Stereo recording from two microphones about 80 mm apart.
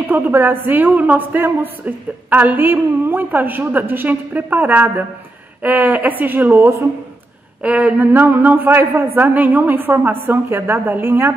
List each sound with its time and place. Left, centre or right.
0.1 s a woman's voice: right